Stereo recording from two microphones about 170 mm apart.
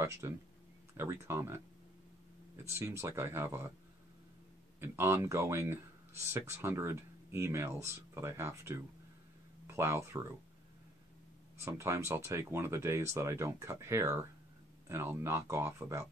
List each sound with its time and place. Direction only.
0.0 s speech: 15° right (ahead or behind)
2.7 s speech: 15° right (ahead or behind)
4.7 s speech: 15° right (ahead or behind)
11.6 s speech: 15° right (ahead or behind)